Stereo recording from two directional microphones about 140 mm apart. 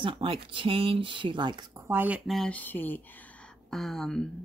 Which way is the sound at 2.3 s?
5° left (ahead or behind).